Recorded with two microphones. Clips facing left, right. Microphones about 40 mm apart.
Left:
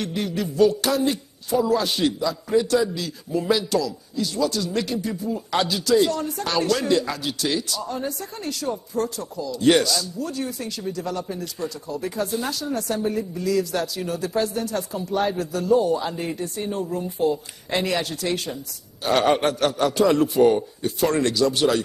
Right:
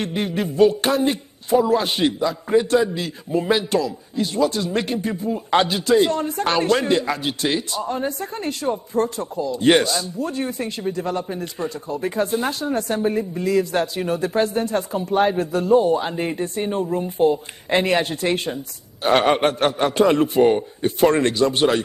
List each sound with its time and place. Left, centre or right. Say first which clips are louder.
0.0 s speech: right 3 dB; right